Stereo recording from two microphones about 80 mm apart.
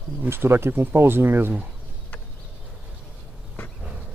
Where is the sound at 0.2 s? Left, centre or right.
Right.